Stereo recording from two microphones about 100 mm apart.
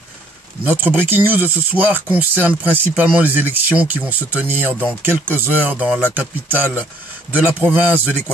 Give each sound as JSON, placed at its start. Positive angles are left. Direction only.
{"t": 0.7, "sound": "speech", "side_deg": -20}